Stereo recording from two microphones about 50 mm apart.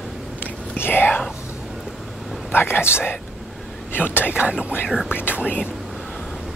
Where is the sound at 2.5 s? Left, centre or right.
Left.